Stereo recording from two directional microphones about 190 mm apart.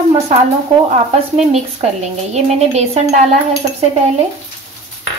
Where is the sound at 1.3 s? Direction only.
35° right (ahead or behind).